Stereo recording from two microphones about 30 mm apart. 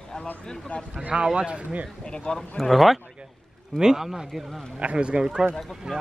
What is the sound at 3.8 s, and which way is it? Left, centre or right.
Speech, centre.